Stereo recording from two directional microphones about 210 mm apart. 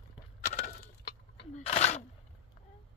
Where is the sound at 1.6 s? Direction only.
30° left (ahead or behind).